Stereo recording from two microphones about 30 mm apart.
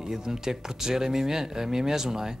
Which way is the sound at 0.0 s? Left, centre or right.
Centre.